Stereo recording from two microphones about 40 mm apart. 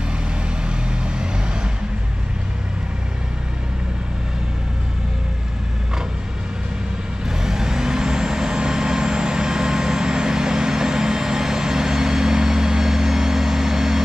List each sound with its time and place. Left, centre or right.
0.8 s vehicle: right
7.2 s vehicle: centre